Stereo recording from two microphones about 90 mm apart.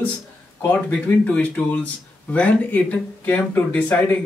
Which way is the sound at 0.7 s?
20° left (ahead or behind).